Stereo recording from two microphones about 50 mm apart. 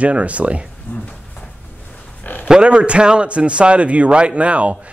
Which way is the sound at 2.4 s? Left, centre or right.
Centre.